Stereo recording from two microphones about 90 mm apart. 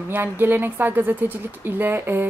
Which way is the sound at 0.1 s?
25° right (ahead or behind).